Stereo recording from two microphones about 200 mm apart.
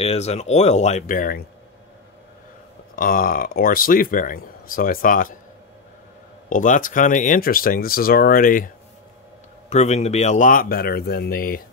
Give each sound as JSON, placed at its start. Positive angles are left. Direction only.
{"t": 0.0, "sound": "speech", "side_deg": 30}
{"t": 3.0, "sound": "speech", "side_deg": 45}
{"t": 6.5, "sound": "speech", "side_deg": 40}